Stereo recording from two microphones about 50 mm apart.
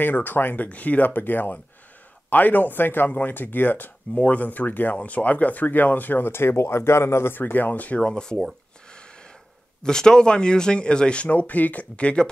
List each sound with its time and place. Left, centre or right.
0.0 s speech: left
6.3 s speech: left
7.3 s speech: left
8.0 s speech: centre
9.8 s speech: centre
11.2 s speech: left